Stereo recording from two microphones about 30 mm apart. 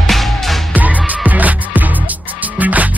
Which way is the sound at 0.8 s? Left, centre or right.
Right.